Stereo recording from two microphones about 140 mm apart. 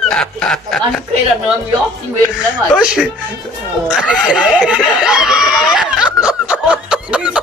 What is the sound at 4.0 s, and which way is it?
Snicker, 5° right (ahead or behind).